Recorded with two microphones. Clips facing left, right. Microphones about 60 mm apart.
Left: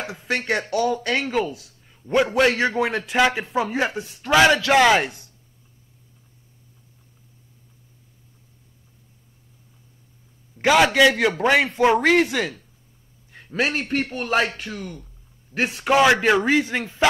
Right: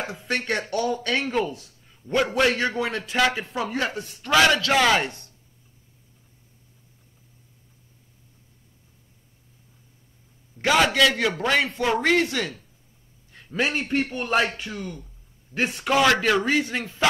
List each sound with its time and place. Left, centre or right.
0.0 s a man's voice: centre
1.6 s a sound: centre
2.4 s speech: centre
10.6 s a man's voice: centre